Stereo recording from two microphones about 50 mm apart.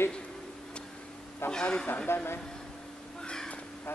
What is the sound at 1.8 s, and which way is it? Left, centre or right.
Speech, left.